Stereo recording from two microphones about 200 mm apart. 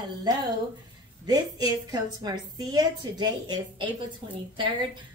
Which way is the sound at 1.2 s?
20° right (ahead or behind).